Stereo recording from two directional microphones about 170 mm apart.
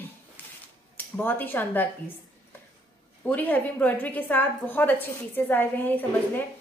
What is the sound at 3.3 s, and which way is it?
A woman's voice, 10° left (ahead or behind).